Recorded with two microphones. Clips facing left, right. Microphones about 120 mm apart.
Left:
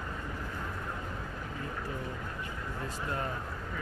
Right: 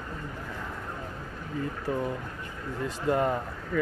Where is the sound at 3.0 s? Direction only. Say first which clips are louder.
Right 12 dB; 70° right (ahead or behind).